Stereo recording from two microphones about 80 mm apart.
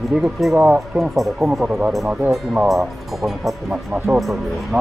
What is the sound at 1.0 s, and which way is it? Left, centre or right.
Speech, centre.